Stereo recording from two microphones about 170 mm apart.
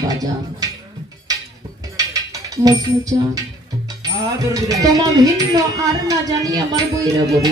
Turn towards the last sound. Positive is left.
turn(degrees=-20)  # may be behind; listen again after turning